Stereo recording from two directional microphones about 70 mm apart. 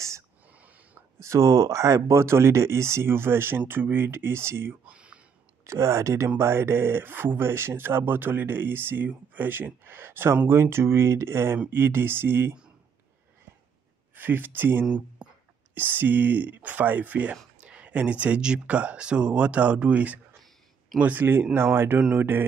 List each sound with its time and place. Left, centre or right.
1.2 s speech: right
4.8 s a sound: centre
5.6 s speech: right
14.1 s speech: right
14.9 s speech: centre
15.7 s speech: right